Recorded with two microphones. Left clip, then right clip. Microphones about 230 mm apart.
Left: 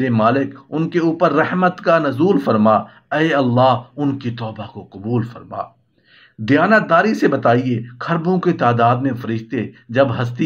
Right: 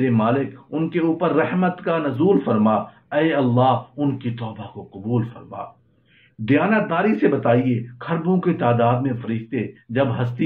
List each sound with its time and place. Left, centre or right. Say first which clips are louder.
0.0 s a man's voice: left 4 dB; left
6.4 s a man's voice: left 5 dB; left